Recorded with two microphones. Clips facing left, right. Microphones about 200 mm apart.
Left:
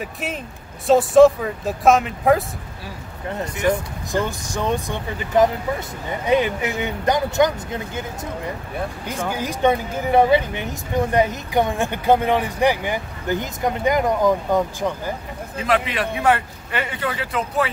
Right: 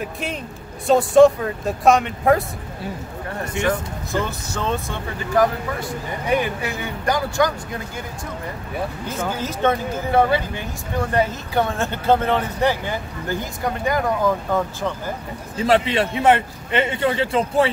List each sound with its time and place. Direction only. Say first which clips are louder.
0.0 s speech: right 1 dB; centre (ahead or behind)
3.3 s speech: left 2 dB; 20° left (ahead or behind)
9.3 s speech: left 2 dB; 15° left (ahead or behind)
15.5 s a man's voice: right 4 dB; 30° right (ahead or behind)